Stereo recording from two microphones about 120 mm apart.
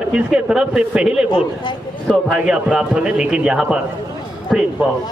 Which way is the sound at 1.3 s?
40° left (ahead or behind).